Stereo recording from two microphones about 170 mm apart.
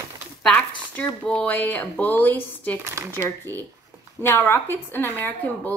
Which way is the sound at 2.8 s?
15° right (ahead or behind).